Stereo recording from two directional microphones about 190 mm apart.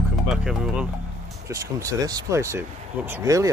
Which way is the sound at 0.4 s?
5° right (ahead or behind).